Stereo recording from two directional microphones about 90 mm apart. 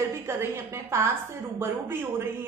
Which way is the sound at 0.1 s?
30° right (ahead or behind).